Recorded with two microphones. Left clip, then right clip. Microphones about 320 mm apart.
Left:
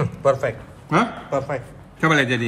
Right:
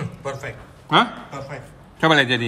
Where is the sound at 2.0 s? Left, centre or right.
Right.